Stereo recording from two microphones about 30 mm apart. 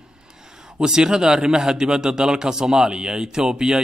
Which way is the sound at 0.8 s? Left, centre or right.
Right.